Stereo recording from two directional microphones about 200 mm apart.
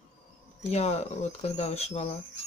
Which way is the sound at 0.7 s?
30° left (ahead or behind).